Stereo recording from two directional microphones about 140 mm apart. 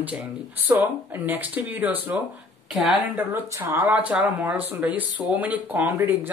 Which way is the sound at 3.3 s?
20° right (ahead or behind).